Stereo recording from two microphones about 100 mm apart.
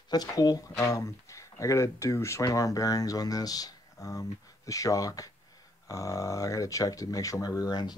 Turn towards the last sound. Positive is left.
turn(degrees=45)  # may be behind; listen again after turning